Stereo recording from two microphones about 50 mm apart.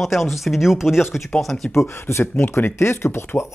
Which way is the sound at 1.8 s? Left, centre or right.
Left.